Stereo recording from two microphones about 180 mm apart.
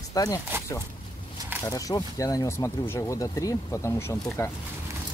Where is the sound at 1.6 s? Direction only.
20° left (ahead or behind).